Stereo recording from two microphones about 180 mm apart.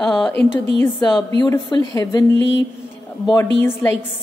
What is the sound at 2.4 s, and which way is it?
Speech, 90° left.